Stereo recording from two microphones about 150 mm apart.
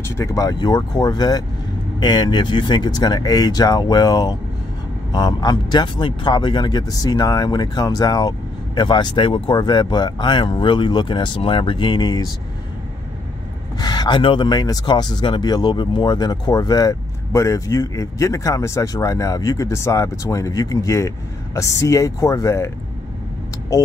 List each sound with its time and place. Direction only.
0.2 s speech: 20° left (ahead or behind)
13.7 s speech: 30° left (ahead or behind)